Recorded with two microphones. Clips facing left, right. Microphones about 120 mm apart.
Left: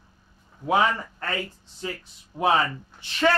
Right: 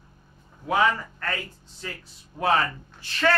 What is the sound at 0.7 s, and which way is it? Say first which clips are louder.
A man's voice: left 1 dB; 20° left (ahead or behind).